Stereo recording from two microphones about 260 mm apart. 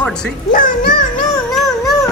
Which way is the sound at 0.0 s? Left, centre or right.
Centre.